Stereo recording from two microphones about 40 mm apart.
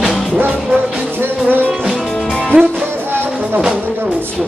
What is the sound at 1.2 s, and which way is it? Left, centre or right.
Music, right.